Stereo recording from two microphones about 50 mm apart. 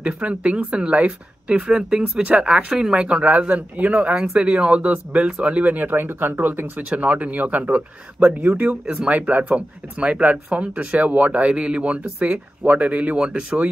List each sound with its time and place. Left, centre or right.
0.0 s speech: right
1.7 s speech: centre; by 6.9 s right
6.9 s speech: right
8.4 s speech: right
9.0 s speech: right